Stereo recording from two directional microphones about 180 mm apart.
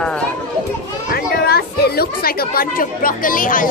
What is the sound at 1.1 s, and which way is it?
Chatter, 60° left (ahead or behind).